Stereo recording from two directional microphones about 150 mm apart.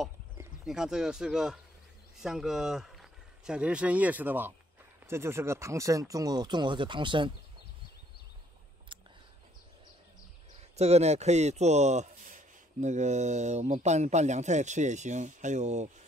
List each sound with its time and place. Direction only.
0.7 s speech: 5° right (ahead or behind); by 7.3 s 35° right (ahead or behind)
10.8 s speech: 45° right (ahead or behind)